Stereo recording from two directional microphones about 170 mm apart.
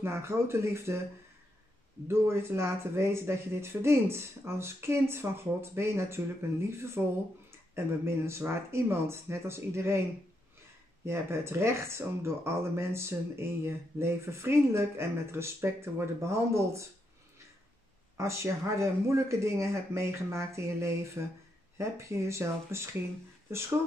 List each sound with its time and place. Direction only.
0.0 s speech: 15° right (ahead or behind)
2.0 s speech: 15° right (ahead or behind)
11.1 s speech: 15° right (ahead or behind)
18.1 s speech: 15° right (ahead or behind)